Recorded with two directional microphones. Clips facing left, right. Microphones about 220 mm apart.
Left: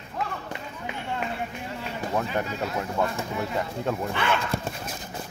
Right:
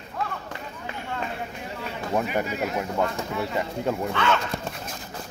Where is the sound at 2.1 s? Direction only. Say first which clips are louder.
Right 3 dB; 15° right (ahead or behind).